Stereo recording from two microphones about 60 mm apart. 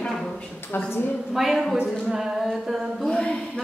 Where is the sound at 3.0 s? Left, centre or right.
Centre.